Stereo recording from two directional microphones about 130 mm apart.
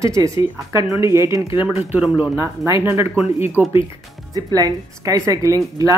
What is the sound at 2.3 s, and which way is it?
Speech, 20° right (ahead or behind).